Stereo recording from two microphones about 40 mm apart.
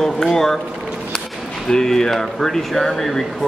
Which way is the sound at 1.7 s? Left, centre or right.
Centre.